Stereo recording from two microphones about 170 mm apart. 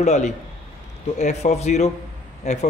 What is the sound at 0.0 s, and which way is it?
Speech, 40° left (ahead or behind).